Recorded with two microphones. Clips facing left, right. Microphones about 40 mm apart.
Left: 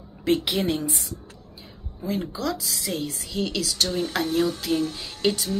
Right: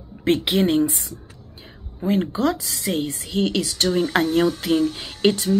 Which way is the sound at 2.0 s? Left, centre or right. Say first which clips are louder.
Right 7 dB; right.